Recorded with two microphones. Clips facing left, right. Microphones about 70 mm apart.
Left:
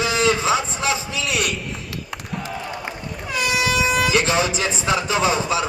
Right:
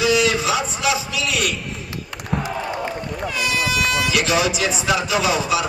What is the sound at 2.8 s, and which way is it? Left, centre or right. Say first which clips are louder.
Run: right 5 dB; centre.